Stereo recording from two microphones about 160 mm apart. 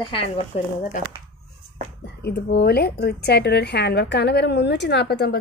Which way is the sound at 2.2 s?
90° left.